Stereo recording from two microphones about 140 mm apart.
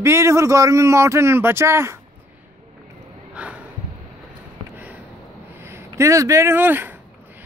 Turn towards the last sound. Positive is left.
turn(degrees=-15)  # may be behind; listen again after turning